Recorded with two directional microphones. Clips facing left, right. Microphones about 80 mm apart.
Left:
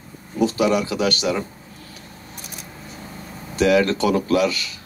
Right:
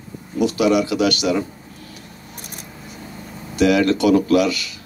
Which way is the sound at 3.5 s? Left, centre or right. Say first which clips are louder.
Right 1 dB; left.